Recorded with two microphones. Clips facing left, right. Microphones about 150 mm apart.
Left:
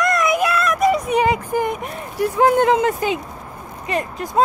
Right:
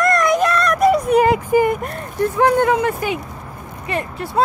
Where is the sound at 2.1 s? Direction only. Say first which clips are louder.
Even; 15° left (ahead or behind).